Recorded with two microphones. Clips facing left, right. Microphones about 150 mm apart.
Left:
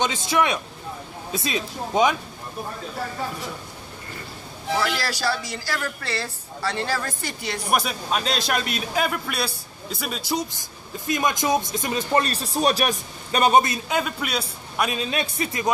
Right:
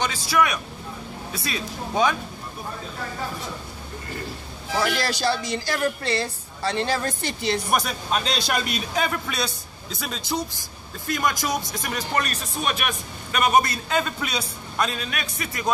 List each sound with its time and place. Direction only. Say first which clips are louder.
0.0 s speech: left 1 dB; 20° left (ahead or behind)
4.7 s speech: right 2 dB; 20° right (ahead or behind)
7.7 s a man's voice: even; centre (ahead or behind)
11.1 s speech: left 3 dB; 20° left (ahead or behind)
13.8 s a man's voice: even; 10° left (ahead or behind)
14.9 s speech: left 5 dB; 25° left (ahead or behind)